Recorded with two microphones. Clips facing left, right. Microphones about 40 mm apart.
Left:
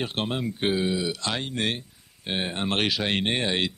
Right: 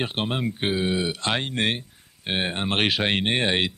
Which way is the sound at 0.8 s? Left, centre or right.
Right.